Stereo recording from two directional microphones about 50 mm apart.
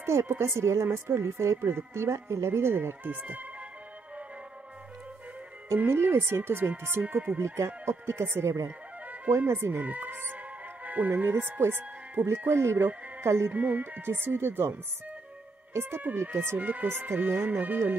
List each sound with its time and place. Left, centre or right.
0.0 s speech: right
0.3 s speech: right
1.6 s speech: right
5.9 s speech: right
7.3 s speech: right
9.5 s speech: right
9.8 s speech: right
12.4 s speech: right
13.5 s speech: right
14.0 s speech: right
16.5 s speech: right